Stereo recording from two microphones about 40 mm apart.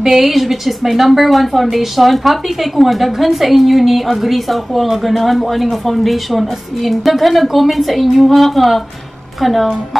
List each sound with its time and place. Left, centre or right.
0.0 s a woman's voice: centre